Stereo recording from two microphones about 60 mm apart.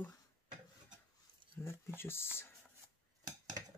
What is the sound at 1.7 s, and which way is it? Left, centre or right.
Speech, left.